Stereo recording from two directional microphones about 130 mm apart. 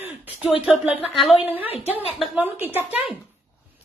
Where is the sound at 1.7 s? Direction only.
50° left (ahead or behind).